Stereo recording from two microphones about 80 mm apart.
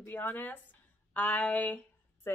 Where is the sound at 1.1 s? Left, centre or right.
Centre.